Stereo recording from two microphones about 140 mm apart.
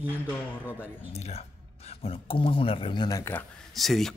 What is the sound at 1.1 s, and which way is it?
Speech, 50° left (ahead or behind).